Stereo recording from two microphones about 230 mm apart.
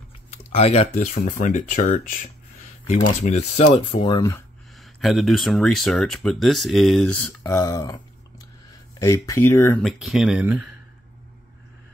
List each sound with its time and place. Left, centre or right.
0.6 s speech: left
4.7 s speech: centre
7.4 s speech: centre
9.0 s speech: centre